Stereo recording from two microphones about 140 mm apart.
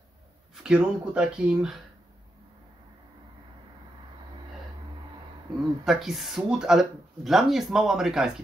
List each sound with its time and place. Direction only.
0.7 s speech: 5° right (ahead or behind)
5.9 s speech: centre (ahead or behind)